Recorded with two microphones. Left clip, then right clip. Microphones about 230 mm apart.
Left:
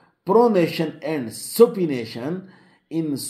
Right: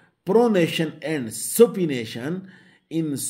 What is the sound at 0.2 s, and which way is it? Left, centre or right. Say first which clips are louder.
Speech: left 2 dB; right.